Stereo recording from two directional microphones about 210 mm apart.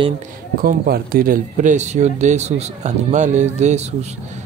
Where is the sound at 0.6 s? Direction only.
45° right (ahead or behind).